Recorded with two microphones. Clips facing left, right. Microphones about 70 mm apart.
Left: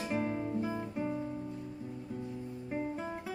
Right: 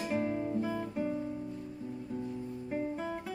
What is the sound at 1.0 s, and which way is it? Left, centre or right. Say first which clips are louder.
Music: right 1 dB; centre.